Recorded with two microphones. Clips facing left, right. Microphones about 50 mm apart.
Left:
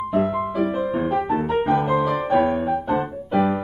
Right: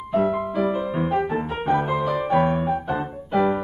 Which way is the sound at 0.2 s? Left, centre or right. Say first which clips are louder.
Right 2 dB; centre.